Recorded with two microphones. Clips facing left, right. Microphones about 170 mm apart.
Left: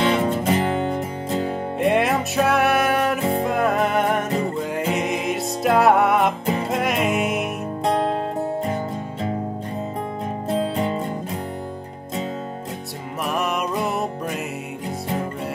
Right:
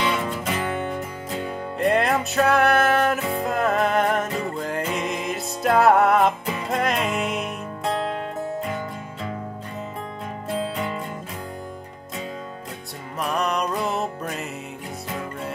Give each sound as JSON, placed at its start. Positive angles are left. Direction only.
{"t": 0.0, "sound": "music", "side_deg": 45}
{"t": 0.6, "sound": "music", "side_deg": 30}
{"t": 1.8, "sound": "music", "side_deg": 0}
{"t": 10.6, "sound": "music", "side_deg": 30}
{"t": 13.2, "sound": "music", "side_deg": 5}